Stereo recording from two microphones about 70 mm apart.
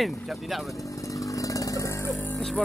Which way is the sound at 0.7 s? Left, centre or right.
Left.